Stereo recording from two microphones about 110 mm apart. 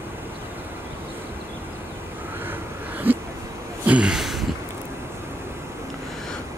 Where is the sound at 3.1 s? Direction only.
20° right (ahead or behind); by 4.5 s centre (ahead or behind).